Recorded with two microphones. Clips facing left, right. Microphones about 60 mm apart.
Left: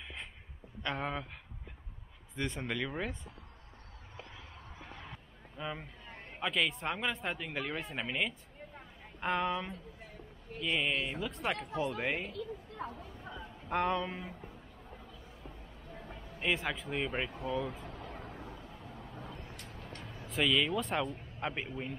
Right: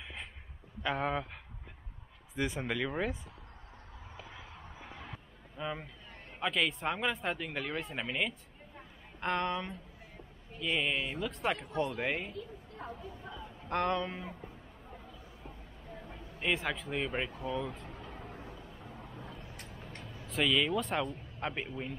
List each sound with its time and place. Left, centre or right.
0.8 s speech: centre
2.3 s speech: centre
4.7 s a sound: centre
5.6 s speech: centre
12.4 s speech: left
13.7 s a sound: centre
15.9 s speech: centre
17.8 s vehicle: left
18.4 s vehicle: right
19.7 s music: left
20.2 s speech: centre